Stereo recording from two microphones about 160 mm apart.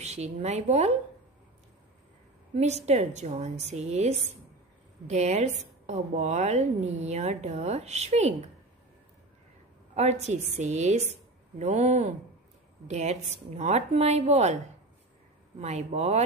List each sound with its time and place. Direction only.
0.0 s a woman's voice: 45° right (ahead or behind)
2.5 s a woman's voice: 45° right (ahead or behind)
9.9 s a woman's voice: 45° right (ahead or behind)
15.6 s a woman's voice: 45° right (ahead or behind)